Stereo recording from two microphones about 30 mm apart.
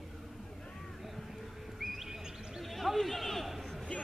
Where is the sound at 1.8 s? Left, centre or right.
Centre.